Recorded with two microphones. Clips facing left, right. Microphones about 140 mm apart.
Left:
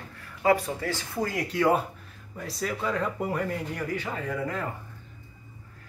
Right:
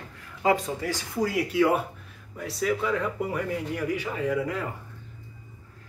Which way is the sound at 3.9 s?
10° right (ahead or behind).